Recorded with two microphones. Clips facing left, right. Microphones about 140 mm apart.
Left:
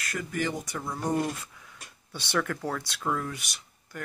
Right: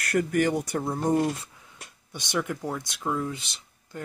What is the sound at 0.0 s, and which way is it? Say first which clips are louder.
Speech: right 8 dB; 60° right (ahead or behind).